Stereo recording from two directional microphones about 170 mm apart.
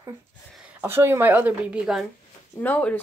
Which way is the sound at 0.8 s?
15° right (ahead or behind).